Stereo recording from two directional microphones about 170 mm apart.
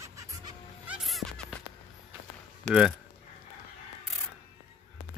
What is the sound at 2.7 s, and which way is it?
Speech, 5° left (ahead or behind).